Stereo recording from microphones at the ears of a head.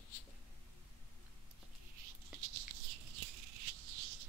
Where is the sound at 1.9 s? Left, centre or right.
Right.